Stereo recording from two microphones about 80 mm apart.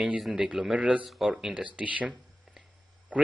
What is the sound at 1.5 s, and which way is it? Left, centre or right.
Speech, centre.